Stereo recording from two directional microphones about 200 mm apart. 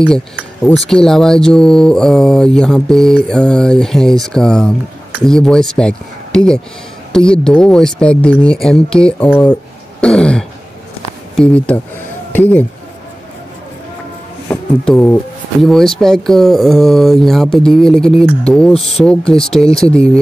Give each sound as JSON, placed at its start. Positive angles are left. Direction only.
{"t": 0.8, "sound": "speech", "side_deg": 0}
{"t": 14.5, "sound": "speech", "side_deg": 10}